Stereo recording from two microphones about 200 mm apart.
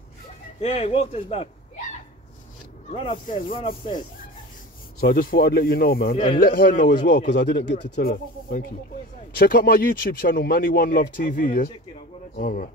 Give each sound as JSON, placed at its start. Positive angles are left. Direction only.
{"t": 0.6, "sound": "speech", "side_deg": 30}
{"t": 2.9, "sound": "speech", "side_deg": 25}
{"t": 5.0, "sound": "speech", "side_deg": 45}
{"t": 6.1, "sound": "speech", "side_deg": 25}
{"t": 6.4, "sound": "speech", "side_deg": 50}
{"t": 7.9, "sound": "speech", "side_deg": 45}